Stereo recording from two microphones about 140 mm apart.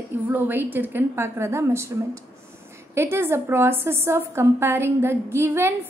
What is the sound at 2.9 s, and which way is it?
A woman's voice, 15° right (ahead or behind).